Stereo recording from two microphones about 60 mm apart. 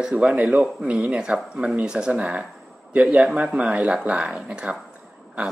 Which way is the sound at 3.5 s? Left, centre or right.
Centre.